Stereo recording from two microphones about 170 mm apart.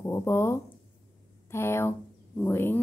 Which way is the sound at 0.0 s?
15° left (ahead or behind).